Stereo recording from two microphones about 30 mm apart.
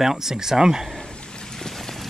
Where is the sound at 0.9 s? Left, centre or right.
Left.